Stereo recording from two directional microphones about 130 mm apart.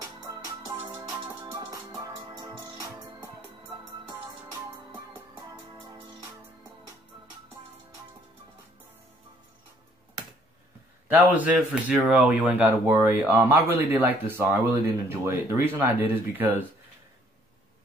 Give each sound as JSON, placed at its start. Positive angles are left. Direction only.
{"t": 0.3, "sound": "music", "side_deg": -25}
{"t": 11.1, "sound": "a man's voice", "side_deg": -10}